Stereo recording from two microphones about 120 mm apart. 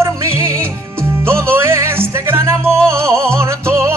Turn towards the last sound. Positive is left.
turn(degrees=-25)  # may be behind; listen again after turning